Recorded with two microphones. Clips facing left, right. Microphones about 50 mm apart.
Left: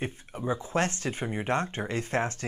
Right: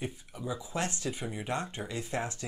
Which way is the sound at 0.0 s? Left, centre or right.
Left.